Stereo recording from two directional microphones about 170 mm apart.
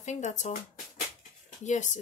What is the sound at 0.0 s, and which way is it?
Speech, 45° left (ahead or behind).